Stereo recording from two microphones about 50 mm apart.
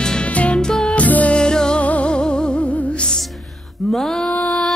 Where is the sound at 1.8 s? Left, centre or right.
Left.